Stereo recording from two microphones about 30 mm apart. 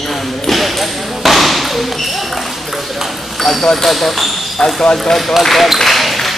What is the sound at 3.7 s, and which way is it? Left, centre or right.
Speech, centre.